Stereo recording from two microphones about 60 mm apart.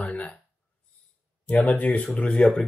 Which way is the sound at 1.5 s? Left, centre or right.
Left.